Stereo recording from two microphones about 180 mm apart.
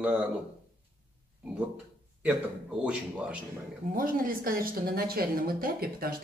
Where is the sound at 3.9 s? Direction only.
50° right (ahead or behind).